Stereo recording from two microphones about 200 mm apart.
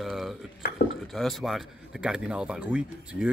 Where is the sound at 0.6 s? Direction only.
50° left (ahead or behind).